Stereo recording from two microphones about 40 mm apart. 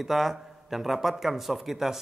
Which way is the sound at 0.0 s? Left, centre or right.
Centre.